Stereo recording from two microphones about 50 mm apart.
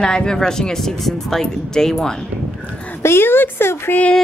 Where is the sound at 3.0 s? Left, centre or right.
Left.